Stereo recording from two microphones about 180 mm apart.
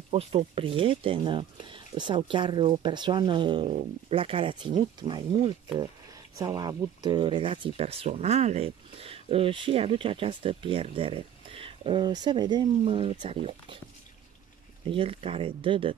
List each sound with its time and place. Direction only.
0.1 s speech: 35° right (ahead or behind)
14.9 s speech: 30° right (ahead or behind)